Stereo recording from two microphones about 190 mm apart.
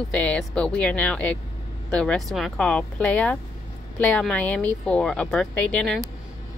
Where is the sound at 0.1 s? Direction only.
5° left (ahead or behind).